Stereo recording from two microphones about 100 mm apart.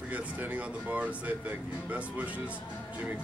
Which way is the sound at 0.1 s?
15° right (ahead or behind).